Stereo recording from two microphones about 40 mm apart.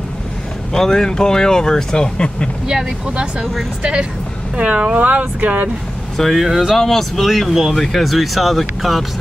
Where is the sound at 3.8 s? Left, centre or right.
Right.